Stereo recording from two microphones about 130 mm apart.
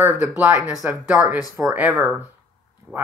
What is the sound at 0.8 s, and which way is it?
Speech, 15° right (ahead or behind).